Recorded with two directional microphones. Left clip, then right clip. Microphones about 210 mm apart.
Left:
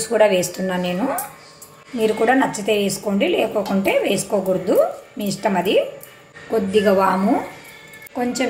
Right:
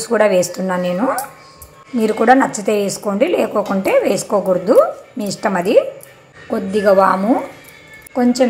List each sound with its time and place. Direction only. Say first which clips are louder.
0.0 s a woman's voice: right 2 dB; 10° right (ahead or behind)